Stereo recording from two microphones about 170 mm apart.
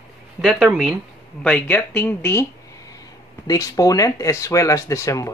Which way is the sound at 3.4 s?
20° left (ahead or behind).